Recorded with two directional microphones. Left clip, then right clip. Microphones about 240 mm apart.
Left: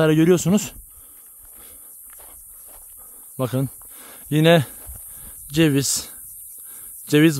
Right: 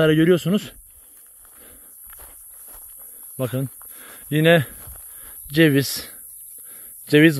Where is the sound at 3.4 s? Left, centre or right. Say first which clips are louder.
Left 2 dB; left.